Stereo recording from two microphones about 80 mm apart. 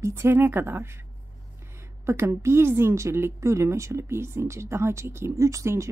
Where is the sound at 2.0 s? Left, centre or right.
Right.